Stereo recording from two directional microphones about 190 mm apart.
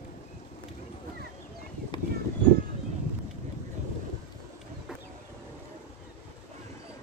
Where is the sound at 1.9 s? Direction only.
25° left (ahead or behind).